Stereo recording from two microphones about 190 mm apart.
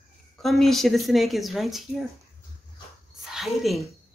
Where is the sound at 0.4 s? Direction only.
Centre (ahead or behind).